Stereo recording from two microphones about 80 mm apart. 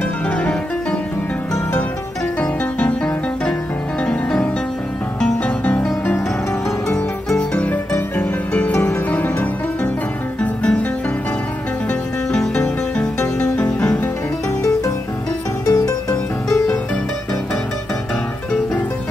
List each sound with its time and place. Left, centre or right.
2.4 s music: centre
4.0 s music: centre
7.5 s music: centre
11.9 s music: centre
15.6 s music: left